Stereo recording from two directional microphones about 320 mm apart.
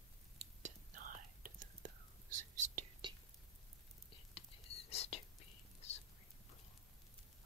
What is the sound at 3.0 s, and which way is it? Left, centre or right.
Whispering, centre.